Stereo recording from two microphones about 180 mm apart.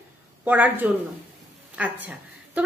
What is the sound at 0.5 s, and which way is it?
Speech, 10° right (ahead or behind).